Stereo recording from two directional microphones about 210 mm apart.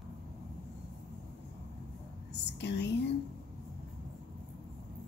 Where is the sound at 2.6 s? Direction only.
55° left (ahead or behind).